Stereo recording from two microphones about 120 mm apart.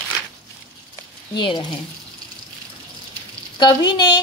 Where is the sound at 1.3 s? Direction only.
40° left (ahead or behind).